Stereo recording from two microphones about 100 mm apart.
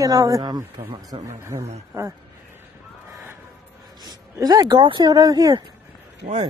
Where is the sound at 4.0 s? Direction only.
45° right (ahead or behind).